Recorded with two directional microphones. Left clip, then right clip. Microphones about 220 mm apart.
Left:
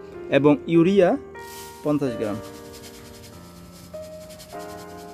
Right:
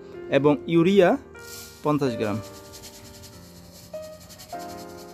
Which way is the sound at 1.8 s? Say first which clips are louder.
Even; 30° right (ahead or behind).